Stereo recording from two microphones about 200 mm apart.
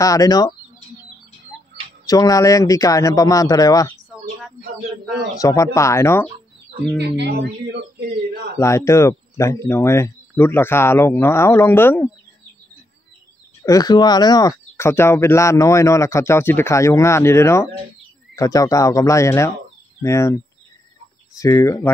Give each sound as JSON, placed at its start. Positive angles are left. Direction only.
{"t": 0.0, "sound": "speech", "side_deg": 15}
{"t": 2.0, "sound": "speech", "side_deg": 15}
{"t": 5.4, "sound": "speech", "side_deg": 15}
{"t": 7.0, "sound": "speech", "side_deg": -55}
{"t": 8.5, "sound": "speech", "side_deg": 15}
{"t": 13.7, "sound": "speech", "side_deg": 20}
{"t": 21.4, "sound": "speech", "side_deg": 15}